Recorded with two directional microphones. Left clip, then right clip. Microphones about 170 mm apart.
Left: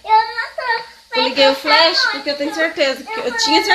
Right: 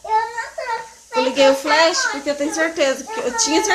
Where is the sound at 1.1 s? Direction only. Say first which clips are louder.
Left 1 dB; 5° right (ahead or behind).